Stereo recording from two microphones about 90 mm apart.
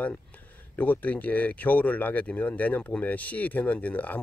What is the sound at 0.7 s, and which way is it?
Speech, 20° left (ahead or behind).